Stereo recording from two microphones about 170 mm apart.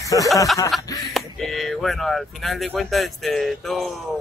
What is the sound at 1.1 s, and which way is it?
Speech, centre (ahead or behind).